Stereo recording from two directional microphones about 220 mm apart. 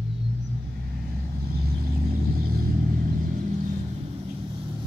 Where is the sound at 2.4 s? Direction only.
40° right (ahead or behind).